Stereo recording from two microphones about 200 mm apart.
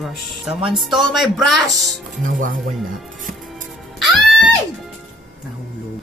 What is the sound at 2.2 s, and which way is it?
Speech, 40° right (ahead or behind).